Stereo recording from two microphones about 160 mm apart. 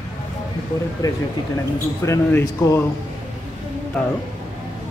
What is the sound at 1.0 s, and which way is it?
Speech, 25° left (ahead or behind).